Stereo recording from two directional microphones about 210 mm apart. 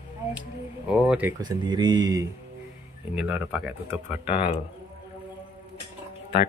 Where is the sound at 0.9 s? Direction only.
5° right (ahead or behind).